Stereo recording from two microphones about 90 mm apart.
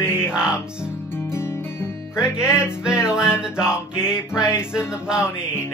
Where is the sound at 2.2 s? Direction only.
10° right (ahead or behind).